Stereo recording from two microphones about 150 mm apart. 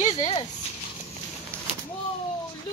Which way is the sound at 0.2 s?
35° left (ahead or behind).